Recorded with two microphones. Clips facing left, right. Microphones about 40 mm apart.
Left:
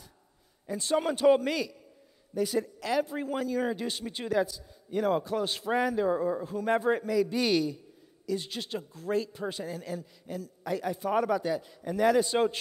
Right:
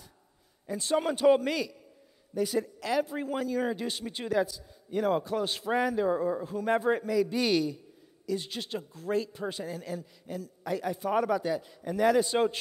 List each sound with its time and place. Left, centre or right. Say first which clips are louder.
0.7 s a man's voice: even; centre